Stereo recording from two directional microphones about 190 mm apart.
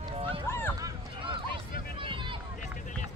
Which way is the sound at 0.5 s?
10° left (ahead or behind).